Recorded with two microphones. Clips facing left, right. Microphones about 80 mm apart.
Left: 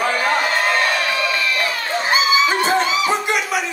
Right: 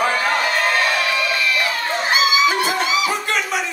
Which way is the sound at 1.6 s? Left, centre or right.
Left.